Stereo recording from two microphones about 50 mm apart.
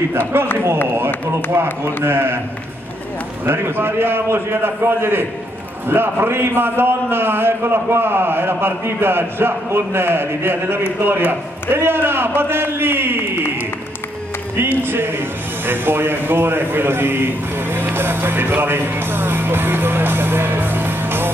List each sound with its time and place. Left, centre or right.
0.9 s speech: right
2.0 s a man's voice: right
3.4 s a man's voice: right